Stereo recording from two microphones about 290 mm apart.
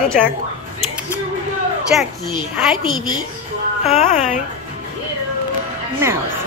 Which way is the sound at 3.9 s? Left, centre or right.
Left.